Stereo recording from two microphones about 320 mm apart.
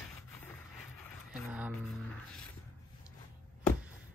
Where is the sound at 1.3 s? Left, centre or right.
Centre.